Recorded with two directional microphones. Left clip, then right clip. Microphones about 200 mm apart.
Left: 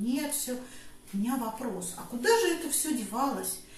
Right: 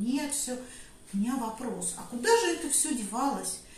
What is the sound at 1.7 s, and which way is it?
A woman's voice, centre (ahead or behind).